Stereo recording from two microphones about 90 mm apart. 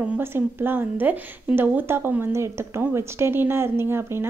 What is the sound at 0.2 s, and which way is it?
Speech, 25° right (ahead or behind).